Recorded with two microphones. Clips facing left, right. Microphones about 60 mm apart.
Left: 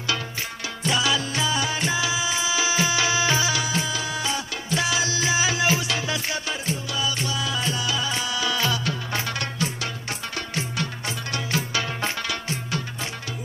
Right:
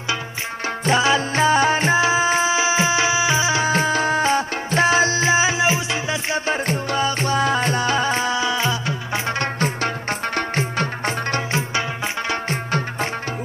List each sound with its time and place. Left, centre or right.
0.8 s music: right
3.6 s music: right
10.3 s music: right